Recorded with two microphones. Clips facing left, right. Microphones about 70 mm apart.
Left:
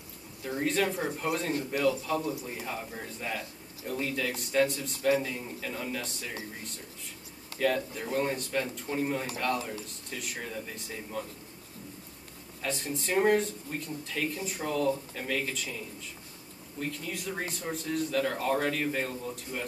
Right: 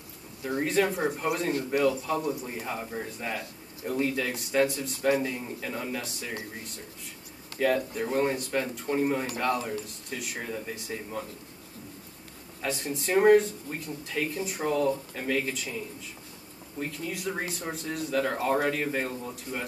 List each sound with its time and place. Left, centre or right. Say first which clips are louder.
0.4 s a man's voice: right 3 dB; centre
5.0 s a man's voice: right 1 dB; right
7.5 s speech: right 3 dB; centre
12.6 s speech: right 2 dB; centre